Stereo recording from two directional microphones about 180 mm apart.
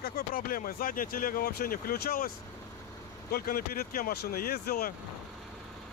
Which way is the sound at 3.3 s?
55° left (ahead or behind).